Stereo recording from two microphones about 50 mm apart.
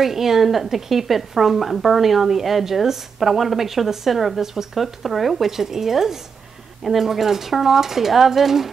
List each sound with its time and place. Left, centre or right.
0.0 s a woman's voice: centre